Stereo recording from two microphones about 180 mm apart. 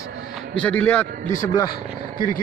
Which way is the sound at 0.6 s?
10° left (ahead or behind).